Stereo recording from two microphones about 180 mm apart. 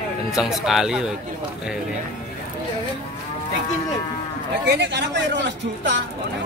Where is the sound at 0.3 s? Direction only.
Centre (ahead or behind).